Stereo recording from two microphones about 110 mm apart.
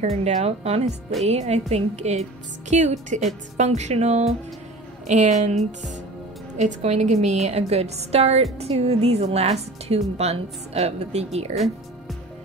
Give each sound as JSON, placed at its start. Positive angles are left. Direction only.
{"t": 0.0, "sound": "a woman's voice", "side_deg": -80}
{"t": 1.2, "sound": "a woman's voice", "side_deg": -85}
{"t": 5.0, "sound": "a woman's voice", "side_deg": -90}
{"t": 6.6, "sound": "a woman's voice", "side_deg": -85}
{"t": 11.5, "sound": "music", "side_deg": 0}